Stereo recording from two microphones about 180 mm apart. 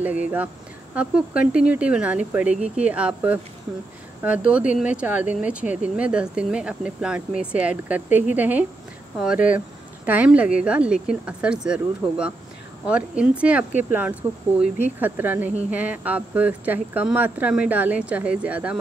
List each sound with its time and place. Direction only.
0.0 s speech: 10° right (ahead or behind)